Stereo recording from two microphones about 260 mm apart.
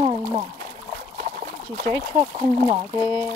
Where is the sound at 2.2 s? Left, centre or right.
Right.